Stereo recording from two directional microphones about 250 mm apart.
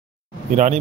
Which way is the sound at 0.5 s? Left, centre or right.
Right.